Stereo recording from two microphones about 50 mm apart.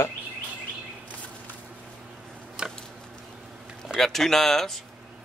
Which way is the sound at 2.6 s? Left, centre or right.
Centre.